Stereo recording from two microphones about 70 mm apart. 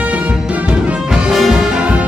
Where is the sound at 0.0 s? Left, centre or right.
Centre.